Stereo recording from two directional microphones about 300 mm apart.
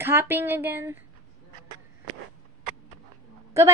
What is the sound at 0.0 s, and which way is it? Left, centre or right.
A woman's voice, centre.